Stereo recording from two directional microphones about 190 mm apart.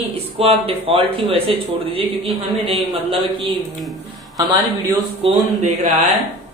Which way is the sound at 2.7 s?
30° right (ahead or behind).